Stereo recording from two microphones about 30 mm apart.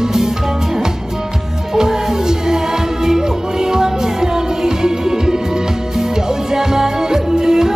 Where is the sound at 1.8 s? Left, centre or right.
Centre.